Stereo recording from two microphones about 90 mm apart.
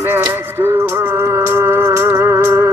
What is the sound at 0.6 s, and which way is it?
Music, 30° right (ahead or behind).